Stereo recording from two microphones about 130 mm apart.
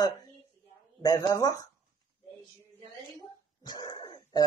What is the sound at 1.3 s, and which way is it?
Speech, 30° left (ahead or behind).